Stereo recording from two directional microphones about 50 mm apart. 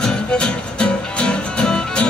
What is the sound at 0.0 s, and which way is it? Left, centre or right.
Music, centre.